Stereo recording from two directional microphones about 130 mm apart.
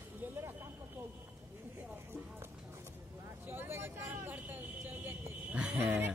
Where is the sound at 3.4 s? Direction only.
15° right (ahead or behind).